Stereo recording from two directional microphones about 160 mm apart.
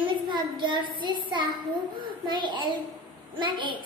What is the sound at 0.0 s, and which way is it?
A child's voice, 30° right (ahead or behind).